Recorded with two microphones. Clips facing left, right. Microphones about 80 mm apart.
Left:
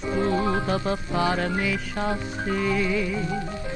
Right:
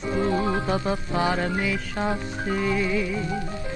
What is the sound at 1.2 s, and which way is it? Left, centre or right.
Music, right.